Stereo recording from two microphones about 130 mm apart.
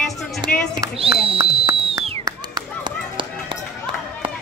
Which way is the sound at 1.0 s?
50° right (ahead or behind).